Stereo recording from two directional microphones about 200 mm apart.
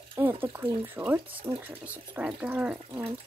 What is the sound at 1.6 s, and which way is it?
Speech, 10° right (ahead or behind).